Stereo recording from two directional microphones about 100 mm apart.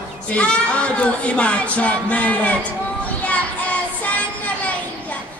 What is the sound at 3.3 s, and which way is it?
Music, 15° left (ahead or behind).